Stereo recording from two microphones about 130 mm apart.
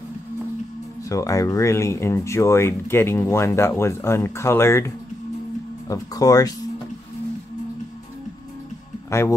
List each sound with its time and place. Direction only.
1.0 s speech: 25° left (ahead or behind)